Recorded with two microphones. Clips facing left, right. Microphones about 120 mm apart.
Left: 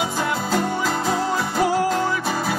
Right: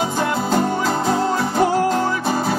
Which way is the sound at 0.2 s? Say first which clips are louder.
Right 4 dB; 35° right (ahead or behind).